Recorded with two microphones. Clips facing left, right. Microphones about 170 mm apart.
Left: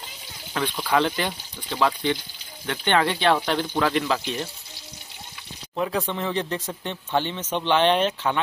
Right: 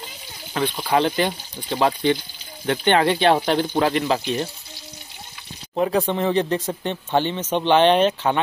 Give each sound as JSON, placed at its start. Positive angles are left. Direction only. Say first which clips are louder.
{"t": 0.6, "sound": "speech", "louder": "right 2 dB", "side_deg": -25}
{"t": 5.8, "sound": "speech", "louder": "right 5 dB", "side_deg": -40}
{"t": 6.3, "sound": "speech", "louder": "right 6 dB", "side_deg": -30}